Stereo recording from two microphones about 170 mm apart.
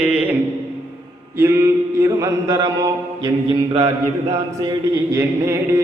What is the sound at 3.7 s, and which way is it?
Mantra, 40° right (ahead or behind).